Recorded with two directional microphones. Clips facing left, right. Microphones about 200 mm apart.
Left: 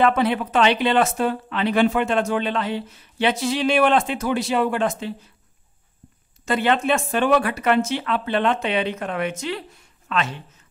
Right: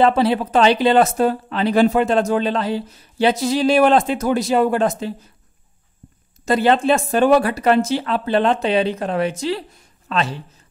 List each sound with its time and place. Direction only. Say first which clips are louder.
0.0 s speech: right 3 dB; 30° right (ahead or behind)
6.4 s speech: right 5 dB; 35° right (ahead or behind)